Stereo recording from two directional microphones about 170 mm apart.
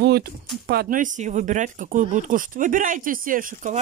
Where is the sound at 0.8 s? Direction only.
50° right (ahead or behind).